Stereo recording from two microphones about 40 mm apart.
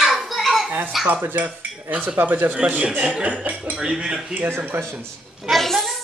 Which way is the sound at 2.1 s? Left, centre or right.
Right.